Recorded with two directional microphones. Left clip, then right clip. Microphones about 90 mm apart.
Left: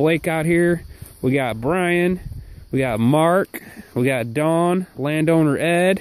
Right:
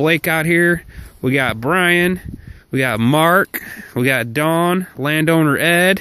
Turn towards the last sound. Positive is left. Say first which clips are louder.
# right 4 dB
turn(degrees=10)  # may be behind; listen again after turning